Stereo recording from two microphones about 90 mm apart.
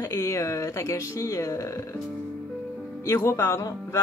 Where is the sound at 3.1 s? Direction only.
35° left (ahead or behind).